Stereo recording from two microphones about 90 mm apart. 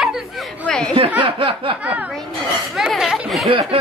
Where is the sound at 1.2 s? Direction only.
75° right (ahead or behind).